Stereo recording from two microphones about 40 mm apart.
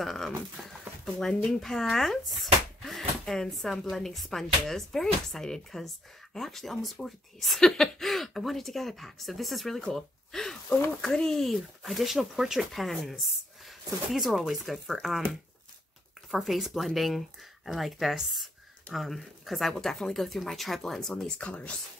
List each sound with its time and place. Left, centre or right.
0.0 s speech: centre
10.3 s speech: centre
11.4 s speech: centre
16.3 s speech: centre
21.4 s speech: left